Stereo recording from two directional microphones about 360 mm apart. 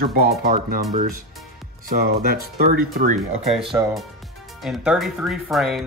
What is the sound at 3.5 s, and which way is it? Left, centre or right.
Speech, centre.